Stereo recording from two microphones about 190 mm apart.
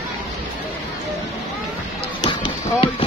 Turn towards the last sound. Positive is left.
turn(degrees=25)  # may be behind; listen again after turning